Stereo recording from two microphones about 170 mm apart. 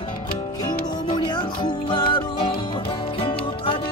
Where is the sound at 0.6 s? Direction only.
25° left (ahead or behind).